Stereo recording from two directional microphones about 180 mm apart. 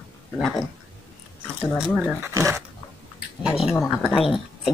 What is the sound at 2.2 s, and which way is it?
Speech, 15° right (ahead or behind).